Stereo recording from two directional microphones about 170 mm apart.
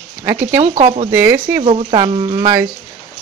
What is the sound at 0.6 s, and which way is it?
Speech, 30° right (ahead or behind).